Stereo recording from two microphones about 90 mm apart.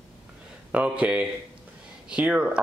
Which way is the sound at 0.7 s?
15° right (ahead or behind).